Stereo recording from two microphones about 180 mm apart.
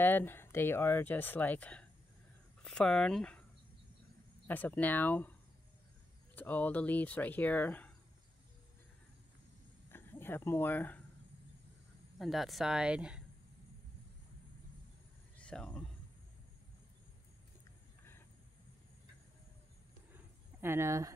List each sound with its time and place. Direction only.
0.0 s speech: 10° left (ahead or behind)
4.5 s speech: 10° left (ahead or behind)
6.3 s speech: 10° left (ahead or behind)
9.8 s speech: 10° left (ahead or behind)
12.2 s speech: centre (ahead or behind)
15.3 s a sound: 5° left (ahead or behind)
20.6 s speech: 15° right (ahead or behind)